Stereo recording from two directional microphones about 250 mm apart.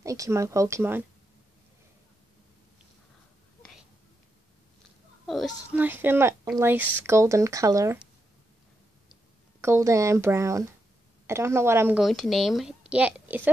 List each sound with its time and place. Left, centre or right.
0.0 s a woman's voice: centre
5.2 s a woman's voice: centre
9.6 s a woman's voice: centre